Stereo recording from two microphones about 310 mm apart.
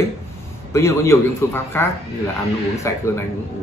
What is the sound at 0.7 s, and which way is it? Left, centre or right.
A man's voice, centre.